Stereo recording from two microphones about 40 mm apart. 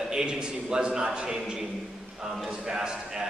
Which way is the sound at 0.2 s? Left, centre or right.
Right.